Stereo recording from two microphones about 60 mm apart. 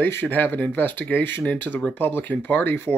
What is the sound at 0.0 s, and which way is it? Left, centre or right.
Speech, left.